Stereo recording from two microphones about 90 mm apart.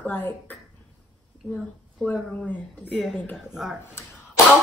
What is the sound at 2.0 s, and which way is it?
Speech, 15° left (ahead or behind).